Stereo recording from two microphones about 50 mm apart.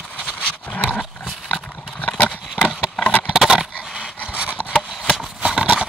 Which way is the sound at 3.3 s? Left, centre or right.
Centre.